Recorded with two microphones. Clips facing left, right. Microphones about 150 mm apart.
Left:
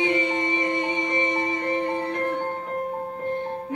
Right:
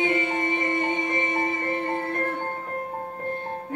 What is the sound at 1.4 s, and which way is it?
Music, 20° left (ahead or behind).